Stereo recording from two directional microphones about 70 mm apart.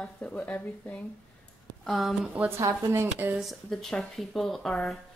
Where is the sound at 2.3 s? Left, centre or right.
Right.